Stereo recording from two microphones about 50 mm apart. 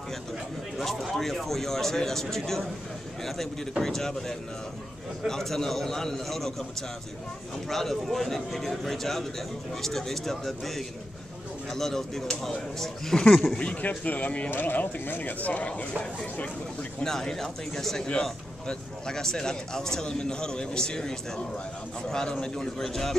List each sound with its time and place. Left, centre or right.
0.7 s a man's voice: centre
7.7 s a man's voice: centre
13.6 s speech: left
17.0 s a man's voice: centre